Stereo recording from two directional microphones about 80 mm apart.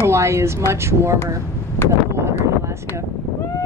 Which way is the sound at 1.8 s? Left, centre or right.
Left.